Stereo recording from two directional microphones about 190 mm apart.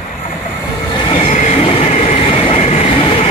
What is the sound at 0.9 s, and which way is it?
Train, 30° left (ahead or behind).